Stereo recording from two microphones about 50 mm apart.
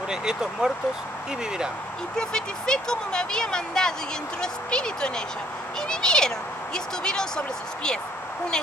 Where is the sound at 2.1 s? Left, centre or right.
Centre.